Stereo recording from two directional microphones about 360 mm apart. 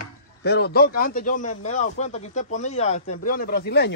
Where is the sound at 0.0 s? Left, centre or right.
Left.